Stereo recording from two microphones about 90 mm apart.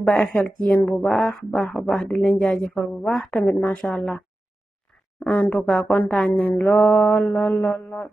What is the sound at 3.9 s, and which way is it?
Speech, 5° left (ahead or behind).